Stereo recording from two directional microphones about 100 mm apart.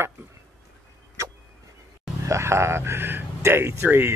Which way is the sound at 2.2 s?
30° right (ahead or behind).